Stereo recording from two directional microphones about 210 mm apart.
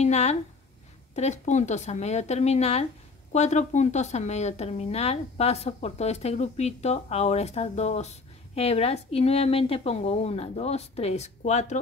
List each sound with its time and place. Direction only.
0.0 s speech: 30° left (ahead or behind)